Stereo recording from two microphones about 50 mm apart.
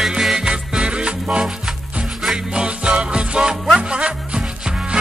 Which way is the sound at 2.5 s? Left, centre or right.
Centre.